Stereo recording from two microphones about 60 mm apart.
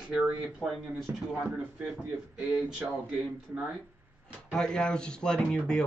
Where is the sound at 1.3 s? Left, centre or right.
Right.